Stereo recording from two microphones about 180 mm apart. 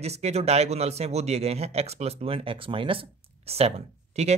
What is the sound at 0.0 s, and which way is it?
Speech, 35° right (ahead or behind).